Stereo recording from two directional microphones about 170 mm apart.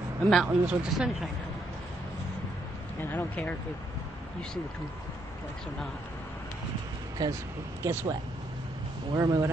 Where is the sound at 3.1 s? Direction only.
10° left (ahead or behind).